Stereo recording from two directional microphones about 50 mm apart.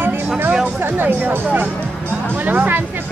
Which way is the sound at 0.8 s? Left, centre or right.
Right.